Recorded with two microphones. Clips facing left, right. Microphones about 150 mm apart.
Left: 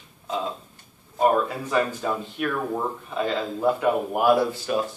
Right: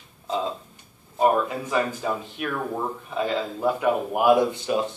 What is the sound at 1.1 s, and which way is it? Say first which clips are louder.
Speech: even; 20° right (ahead or behind).